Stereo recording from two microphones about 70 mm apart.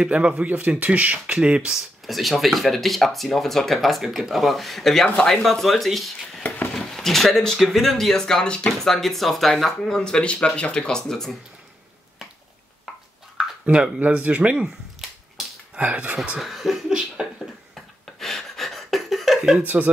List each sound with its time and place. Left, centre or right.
0.0 s speech: centre
2.0 s speech: centre
13.4 s speech: centre
15.7 s speech: right
16.3 s a sound: centre
18.2 s breathing: centre
19.6 s speech: right